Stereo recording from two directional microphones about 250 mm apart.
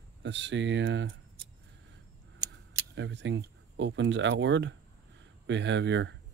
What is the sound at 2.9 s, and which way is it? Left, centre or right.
Speech, right.